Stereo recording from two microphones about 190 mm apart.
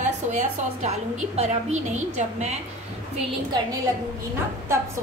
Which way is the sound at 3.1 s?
20° right (ahead or behind).